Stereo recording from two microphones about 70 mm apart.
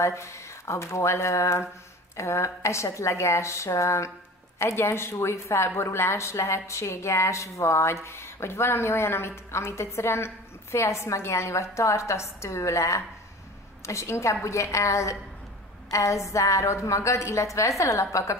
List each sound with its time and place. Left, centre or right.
0.0 s a woman's voice: left